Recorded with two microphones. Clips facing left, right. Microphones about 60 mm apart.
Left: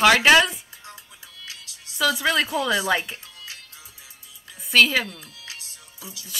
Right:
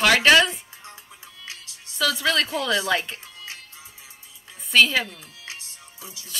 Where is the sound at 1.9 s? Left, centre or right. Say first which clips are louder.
Left 1 dB; centre.